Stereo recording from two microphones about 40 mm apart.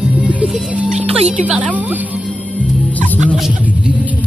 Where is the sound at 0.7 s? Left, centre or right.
Right.